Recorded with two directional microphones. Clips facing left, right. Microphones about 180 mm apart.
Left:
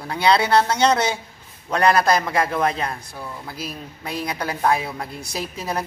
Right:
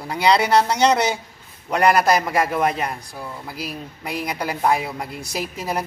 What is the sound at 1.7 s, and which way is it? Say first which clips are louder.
Speech: right 1 dB; 10° right (ahead or behind).